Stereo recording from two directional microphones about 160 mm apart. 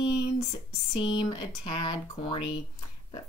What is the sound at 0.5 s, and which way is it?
A woman's voice, 30° left (ahead or behind).